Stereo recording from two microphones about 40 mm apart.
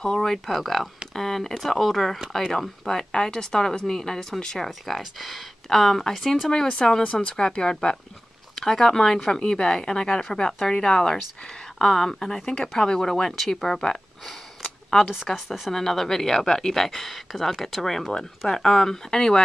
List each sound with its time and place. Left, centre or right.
0.0 s a woman's voice: centre
0.5 s a woman's voice: centre
4.6 s speech: centre
6.5 s a woman's voice: centre
8.5 s a woman's voice: centre
14.6 s a sound: centre
15.3 s speech: centre
15.7 s a woman's voice: centre